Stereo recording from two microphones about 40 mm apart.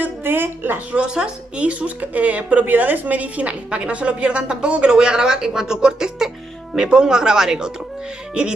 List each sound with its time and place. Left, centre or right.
0.0 s a sound: right
0.9 s a woman's voice: right
1.7 s speech: right
2.6 s a woman's voice: right
4.9 s a woman's voice: centre